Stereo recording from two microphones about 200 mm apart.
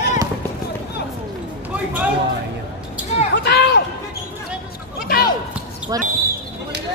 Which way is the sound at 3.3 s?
55° left (ahead or behind).